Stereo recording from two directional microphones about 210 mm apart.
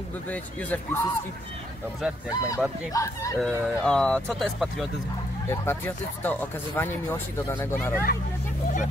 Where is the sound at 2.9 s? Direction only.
15° left (ahead or behind).